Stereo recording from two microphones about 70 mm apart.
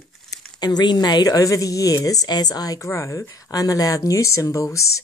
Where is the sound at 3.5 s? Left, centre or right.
Left.